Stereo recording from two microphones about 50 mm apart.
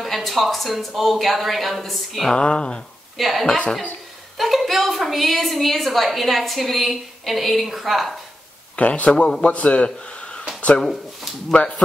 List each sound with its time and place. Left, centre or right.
0.0 s a woman's voice: centre
2.3 s speech: centre
3.2 s a woman's voice: centre
3.4 s a woman's voice: centre
4.4 s a woman's voice: centre
8.7 s a man's voice: left
10.8 s a woman's voice: centre
11.6 s speech: left